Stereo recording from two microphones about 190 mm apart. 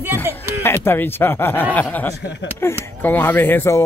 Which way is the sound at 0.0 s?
10° right (ahead or behind).